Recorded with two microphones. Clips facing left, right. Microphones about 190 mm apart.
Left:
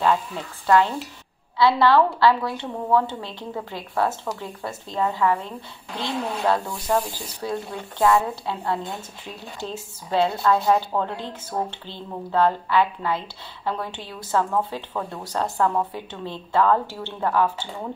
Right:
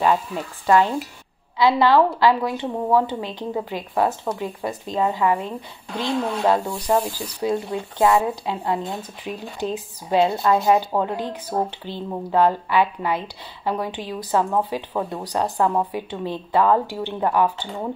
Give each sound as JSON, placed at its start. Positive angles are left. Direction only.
{"t": 0.7, "sound": "speech", "side_deg": -15}